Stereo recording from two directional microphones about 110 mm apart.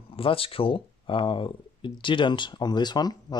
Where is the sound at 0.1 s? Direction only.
55° left (ahead or behind).